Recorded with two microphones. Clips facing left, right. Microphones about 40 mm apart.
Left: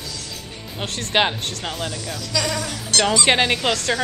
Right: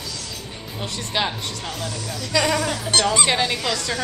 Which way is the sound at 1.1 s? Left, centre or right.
Left.